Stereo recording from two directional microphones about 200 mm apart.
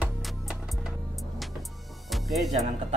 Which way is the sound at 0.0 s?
Centre (ahead or behind).